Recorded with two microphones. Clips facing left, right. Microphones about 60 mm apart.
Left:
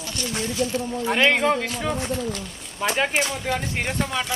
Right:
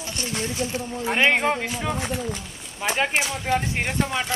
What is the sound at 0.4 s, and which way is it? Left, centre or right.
Speech, right.